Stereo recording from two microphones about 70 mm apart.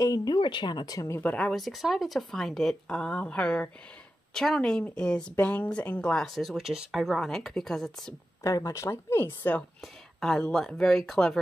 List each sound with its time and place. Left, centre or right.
0.0 s speech: left
1.2 s speech: centre
1.5 s speech: centre
8.5 s speech: left
10.2 s speech: centre